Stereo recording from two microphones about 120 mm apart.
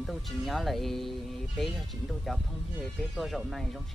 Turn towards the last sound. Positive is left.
turn(degrees=0)  # may be behind; listen again after turning